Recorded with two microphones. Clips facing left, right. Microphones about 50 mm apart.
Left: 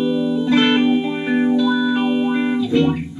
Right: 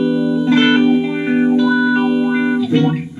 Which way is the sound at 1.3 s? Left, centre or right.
Right.